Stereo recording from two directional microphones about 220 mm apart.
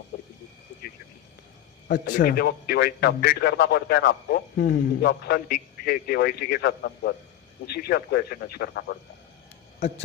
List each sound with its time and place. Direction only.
2.0 s a man's voice: 40° left (ahead or behind)